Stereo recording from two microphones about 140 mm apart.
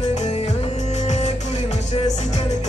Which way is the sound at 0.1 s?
55° left (ahead or behind).